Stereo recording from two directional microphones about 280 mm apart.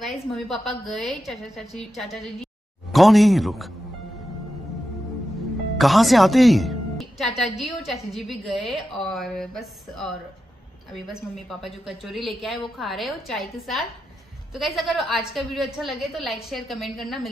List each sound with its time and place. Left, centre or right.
0.0 s a woman's voice: centre
5.8 s a woman's voice: centre